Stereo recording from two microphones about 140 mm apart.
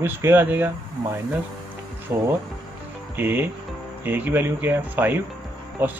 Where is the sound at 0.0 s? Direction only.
15° right (ahead or behind).